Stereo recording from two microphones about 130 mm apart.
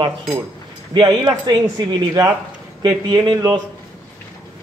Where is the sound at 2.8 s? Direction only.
35° right (ahead or behind).